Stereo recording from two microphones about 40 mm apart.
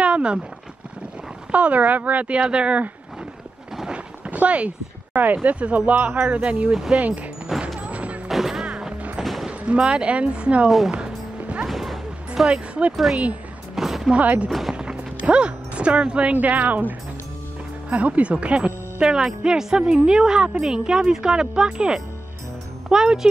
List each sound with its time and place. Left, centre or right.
0.0 s a sound: right
1.5 s speech: right
3.9 s speech: right
7.5 s music: centre
7.8 s music: right
8.3 s music: centre
9.5 s speech: right
11.6 s bow-wow: centre
12.4 s speech: right
12.9 s speech: centre
13.7 s music: centre
14.7 s music: right
16.3 s a woman's voice: right
17.8 s speech: right; by 23.2 s centre